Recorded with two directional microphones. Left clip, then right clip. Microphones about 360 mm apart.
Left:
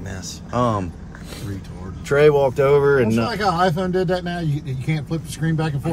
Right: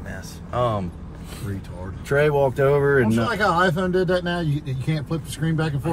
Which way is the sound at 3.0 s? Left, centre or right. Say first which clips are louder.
Even; centre.